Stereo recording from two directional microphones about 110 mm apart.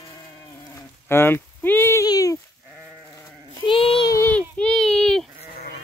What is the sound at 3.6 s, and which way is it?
Child singing, 55° left (ahead or behind).